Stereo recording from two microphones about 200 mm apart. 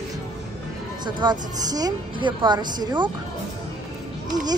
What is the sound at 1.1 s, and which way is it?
A woman's voice, 20° right (ahead or behind).